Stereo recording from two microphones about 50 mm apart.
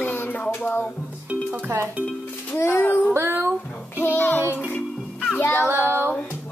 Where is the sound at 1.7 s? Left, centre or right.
Right.